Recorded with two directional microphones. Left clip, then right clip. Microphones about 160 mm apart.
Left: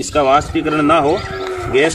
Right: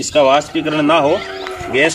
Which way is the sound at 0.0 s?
20° right (ahead or behind).